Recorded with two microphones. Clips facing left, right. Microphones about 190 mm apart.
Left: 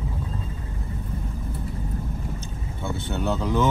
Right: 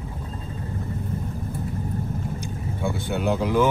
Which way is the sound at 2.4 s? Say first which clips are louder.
Right 5 dB; 15° right (ahead or behind).